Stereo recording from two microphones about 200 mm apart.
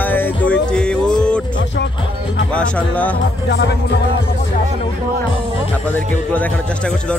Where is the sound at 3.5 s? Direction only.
60° left (ahead or behind).